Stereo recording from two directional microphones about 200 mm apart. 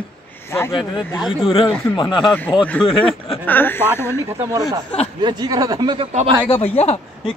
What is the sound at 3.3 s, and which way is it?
Speech, 10° left (ahead or behind).